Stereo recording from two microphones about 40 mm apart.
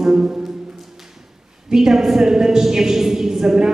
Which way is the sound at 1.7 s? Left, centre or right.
Centre.